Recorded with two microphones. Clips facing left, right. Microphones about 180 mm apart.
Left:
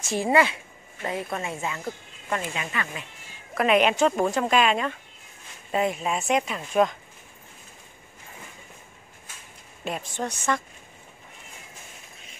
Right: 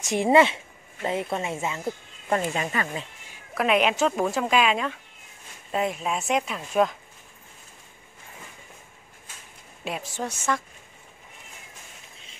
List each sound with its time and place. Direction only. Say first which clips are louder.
0.0 s a woman's voice: right 3 dB; 20° right (ahead or behind)
2.2 s speech: right 5 dB; 35° right (ahead or behind)
3.5 s speech: left 2 dB; centre (ahead or behind)
9.8 s speech: left 1 dB; 5° right (ahead or behind)